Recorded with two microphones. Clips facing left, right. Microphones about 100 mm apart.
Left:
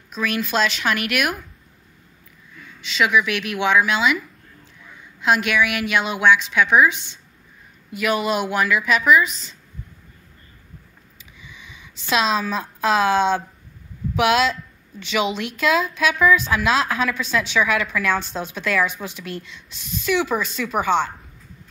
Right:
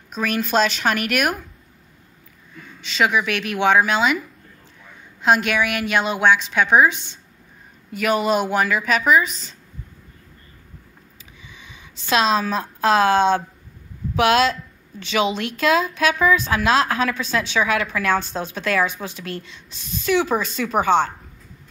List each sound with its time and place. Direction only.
0.1 s a woman's voice: 40° right (ahead or behind)
2.8 s a woman's voice: 40° right (ahead or behind)
5.2 s a woman's voice: 35° right (ahead or behind)
12.1 s a woman's voice: 35° right (ahead or behind)